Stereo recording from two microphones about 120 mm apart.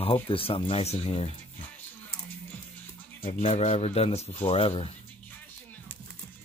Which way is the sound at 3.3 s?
65° left (ahead or behind).